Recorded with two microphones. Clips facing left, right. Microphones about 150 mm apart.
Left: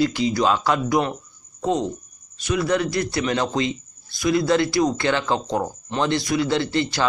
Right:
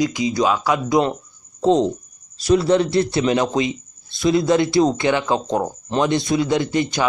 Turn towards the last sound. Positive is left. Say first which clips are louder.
# right 2 dB
turn(degrees=-15)  # may be behind; listen again after turning